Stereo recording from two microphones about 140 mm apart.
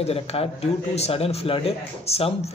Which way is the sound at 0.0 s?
45° left (ahead or behind).